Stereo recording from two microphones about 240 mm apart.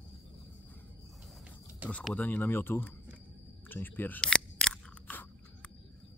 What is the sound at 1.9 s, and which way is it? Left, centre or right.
Speech, centre.